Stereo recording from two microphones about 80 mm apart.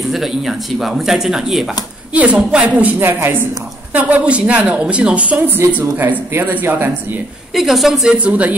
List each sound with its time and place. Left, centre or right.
0.1 s speech: centre
2.1 s a woman's voice: centre
7.5 s a woman's voice: centre